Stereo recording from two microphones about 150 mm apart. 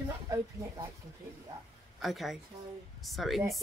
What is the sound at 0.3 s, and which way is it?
Speech, 20° right (ahead or behind).